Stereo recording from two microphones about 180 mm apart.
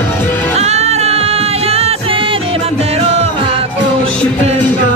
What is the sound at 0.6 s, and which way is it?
Music, 35° right (ahead or behind).